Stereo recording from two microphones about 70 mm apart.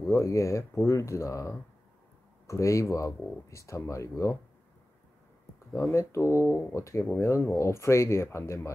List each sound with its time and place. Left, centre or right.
0.0 s speech: left
5.9 s speech: left